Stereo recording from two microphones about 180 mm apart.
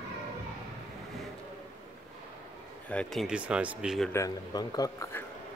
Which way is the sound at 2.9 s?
5° left (ahead or behind).